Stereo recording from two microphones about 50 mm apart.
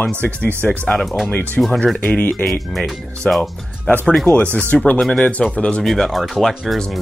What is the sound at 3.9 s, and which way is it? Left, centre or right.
Speech, left.